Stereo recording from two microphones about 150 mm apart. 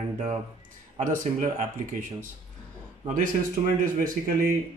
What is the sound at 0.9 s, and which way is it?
Speech, 55° right (ahead or behind).